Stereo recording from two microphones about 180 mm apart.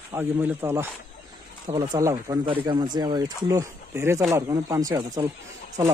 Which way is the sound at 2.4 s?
30° right (ahead or behind).